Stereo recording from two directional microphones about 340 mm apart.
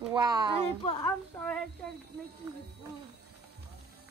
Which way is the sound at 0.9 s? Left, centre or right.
Centre.